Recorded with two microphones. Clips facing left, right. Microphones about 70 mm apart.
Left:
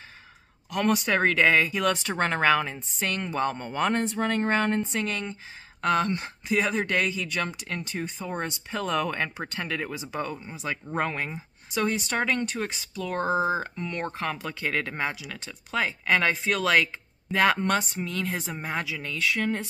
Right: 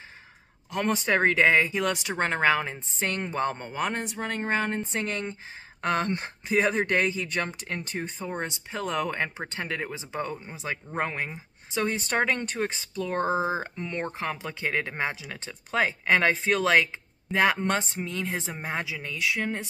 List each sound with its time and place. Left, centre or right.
0.7 s speech: right
3.7 s speech: centre
4.9 s speech: right
8.3 s speech: centre